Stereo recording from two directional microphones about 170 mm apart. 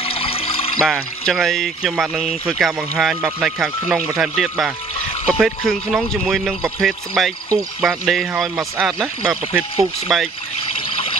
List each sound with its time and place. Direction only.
0.0 s water: 35° left (ahead or behind)
0.8 s speech: centre (ahead or behind)